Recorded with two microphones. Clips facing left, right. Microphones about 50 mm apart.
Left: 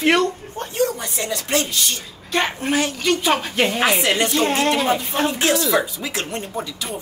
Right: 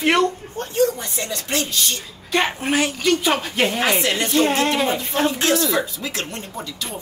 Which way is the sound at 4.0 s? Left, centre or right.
Centre.